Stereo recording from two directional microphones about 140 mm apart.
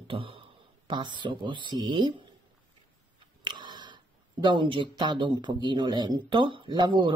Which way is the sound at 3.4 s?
30° right (ahead or behind).